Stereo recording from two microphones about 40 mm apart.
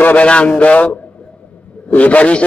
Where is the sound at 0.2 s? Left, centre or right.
Left.